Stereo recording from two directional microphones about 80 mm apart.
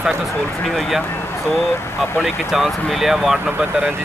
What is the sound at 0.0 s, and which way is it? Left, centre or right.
Speech, centre.